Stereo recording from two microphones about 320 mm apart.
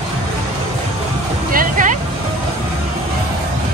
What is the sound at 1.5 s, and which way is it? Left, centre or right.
Music, right.